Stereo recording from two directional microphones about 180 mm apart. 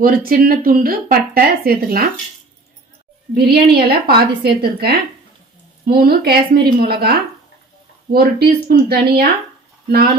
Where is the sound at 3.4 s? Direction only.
60° right (ahead or behind).